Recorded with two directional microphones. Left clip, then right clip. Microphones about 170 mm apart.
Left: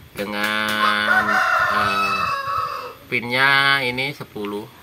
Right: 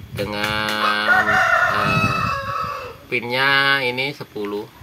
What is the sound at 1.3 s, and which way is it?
Crowing, 90° left.